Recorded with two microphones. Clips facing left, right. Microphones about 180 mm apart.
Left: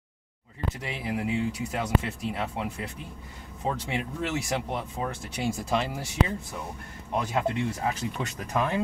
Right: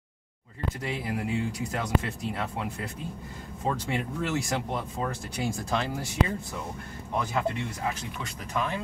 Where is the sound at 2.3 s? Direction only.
5° left (ahead or behind).